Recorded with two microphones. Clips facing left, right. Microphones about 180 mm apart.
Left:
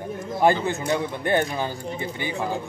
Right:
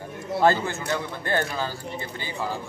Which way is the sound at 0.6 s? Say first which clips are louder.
Left 4 dB; 20° left (ahead or behind).